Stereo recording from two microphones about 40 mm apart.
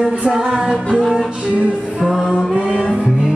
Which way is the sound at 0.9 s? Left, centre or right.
Centre.